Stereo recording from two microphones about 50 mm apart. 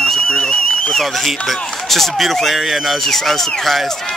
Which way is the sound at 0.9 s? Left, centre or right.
Centre.